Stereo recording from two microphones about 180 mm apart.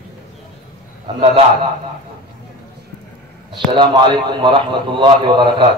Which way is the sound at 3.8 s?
25° right (ahead or behind).